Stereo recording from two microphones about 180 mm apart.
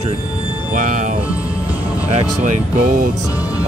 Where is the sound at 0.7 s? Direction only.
45° right (ahead or behind).